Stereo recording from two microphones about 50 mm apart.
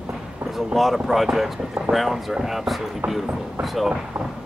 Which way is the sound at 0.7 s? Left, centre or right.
Centre.